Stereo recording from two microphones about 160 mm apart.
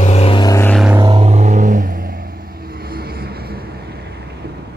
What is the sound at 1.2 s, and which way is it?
Vehicle, 45° right (ahead or behind).